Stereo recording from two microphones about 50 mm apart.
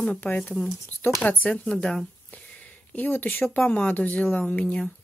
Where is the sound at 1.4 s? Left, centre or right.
Left.